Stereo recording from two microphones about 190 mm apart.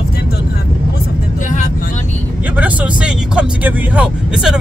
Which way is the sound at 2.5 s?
5° right (ahead or behind).